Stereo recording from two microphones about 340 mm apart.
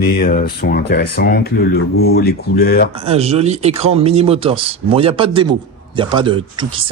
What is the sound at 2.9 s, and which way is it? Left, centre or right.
Speech, centre.